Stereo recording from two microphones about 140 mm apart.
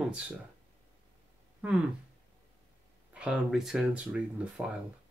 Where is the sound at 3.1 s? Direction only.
5° right (ahead or behind).